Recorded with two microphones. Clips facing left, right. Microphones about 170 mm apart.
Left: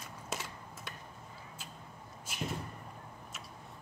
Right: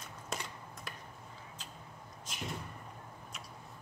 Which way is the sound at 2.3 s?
10° left (ahead or behind).